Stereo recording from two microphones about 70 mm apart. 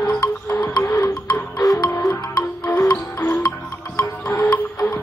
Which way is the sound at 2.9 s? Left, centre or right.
Left.